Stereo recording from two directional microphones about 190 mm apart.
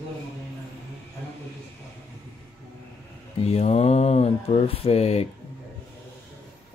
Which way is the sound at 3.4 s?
35° left (ahead or behind).